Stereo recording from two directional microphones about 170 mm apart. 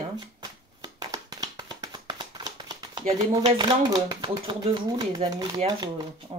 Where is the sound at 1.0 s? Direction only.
20° right (ahead or behind).